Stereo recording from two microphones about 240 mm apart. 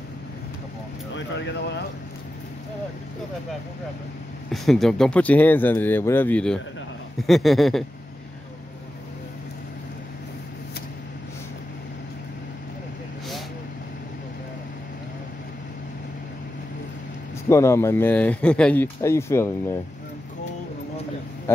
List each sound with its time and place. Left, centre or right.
1.1 s speech: left
4.5 s speech: centre
17.5 s speech: centre